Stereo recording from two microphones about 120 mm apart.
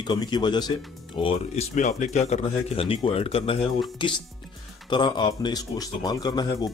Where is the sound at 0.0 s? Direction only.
40° left (ahead or behind).